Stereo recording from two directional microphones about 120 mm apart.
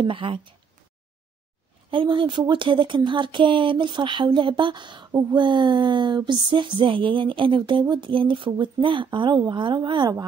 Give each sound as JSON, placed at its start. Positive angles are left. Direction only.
{"t": 0.0, "sound": "speech", "side_deg": -45}
{"t": 1.9, "sound": "speech", "side_deg": -45}